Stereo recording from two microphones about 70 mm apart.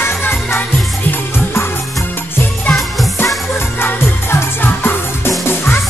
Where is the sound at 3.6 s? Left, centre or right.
Left.